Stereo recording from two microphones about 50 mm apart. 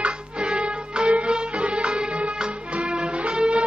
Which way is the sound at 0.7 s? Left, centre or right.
Centre.